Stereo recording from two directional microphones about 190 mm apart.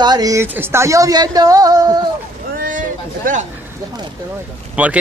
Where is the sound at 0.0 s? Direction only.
20° right (ahead or behind).